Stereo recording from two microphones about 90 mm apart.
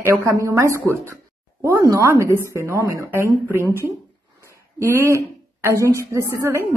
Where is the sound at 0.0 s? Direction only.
35° right (ahead or behind).